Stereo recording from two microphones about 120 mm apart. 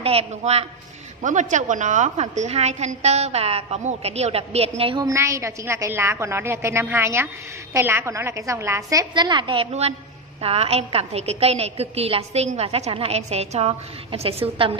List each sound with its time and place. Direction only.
0.0 s a woman's voice: 55° right (ahead or behind)
1.2 s a woman's voice: 90° right; by 5.0 s 50° right (ahead or behind)
5.0 s a woman's voice: 25° right (ahead or behind)
9.1 s a woman's voice: 40° right (ahead or behind)